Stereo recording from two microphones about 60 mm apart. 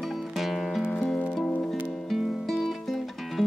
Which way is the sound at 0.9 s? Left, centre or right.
Centre.